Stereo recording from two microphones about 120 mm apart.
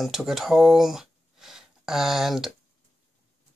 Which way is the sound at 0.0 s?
Centre (ahead or behind).